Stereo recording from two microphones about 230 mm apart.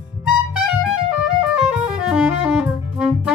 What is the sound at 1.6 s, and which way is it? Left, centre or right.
Music, centre.